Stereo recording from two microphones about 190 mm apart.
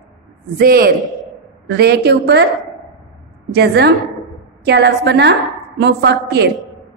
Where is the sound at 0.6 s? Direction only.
50° right (ahead or behind).